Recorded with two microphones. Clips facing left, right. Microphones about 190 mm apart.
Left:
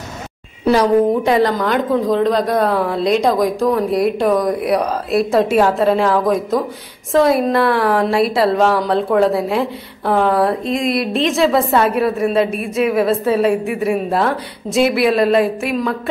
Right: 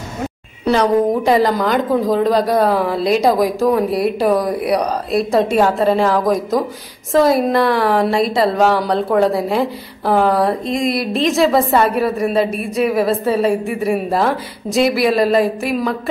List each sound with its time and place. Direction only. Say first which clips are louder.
0.7 s a woman's voice: left 1 dB; 5° left (ahead or behind)